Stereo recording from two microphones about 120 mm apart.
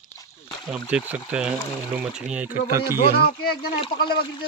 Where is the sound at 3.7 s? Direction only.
50° left (ahead or behind).